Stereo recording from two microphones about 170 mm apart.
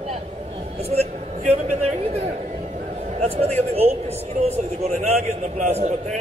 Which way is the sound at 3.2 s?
35° right (ahead or behind).